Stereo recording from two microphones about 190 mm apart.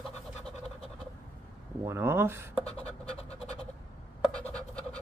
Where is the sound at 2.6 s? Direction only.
35° left (ahead or behind).